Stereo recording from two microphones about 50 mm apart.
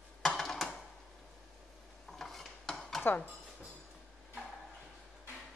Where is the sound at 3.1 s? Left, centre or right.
Left.